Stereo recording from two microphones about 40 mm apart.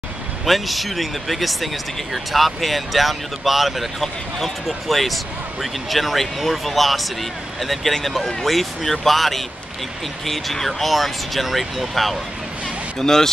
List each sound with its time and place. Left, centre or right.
0.5 s speech: centre
13.0 s speech: centre